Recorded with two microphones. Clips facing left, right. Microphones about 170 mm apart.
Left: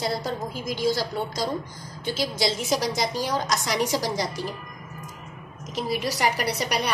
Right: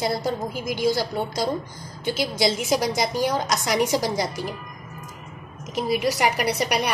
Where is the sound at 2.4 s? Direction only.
15° right (ahead or behind).